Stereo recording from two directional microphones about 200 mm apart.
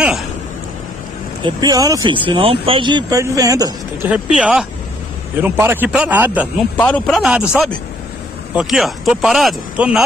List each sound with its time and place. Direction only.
1.4 s speech: 20° right (ahead or behind)
4.4 s a man's voice: 5° right (ahead or behind)
6.8 s speech: 5° left (ahead or behind)